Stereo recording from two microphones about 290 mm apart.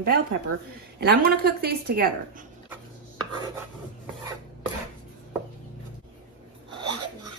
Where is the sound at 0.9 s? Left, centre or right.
Right.